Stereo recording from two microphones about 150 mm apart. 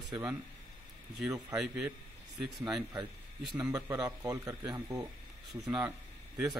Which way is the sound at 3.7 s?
25° right (ahead or behind).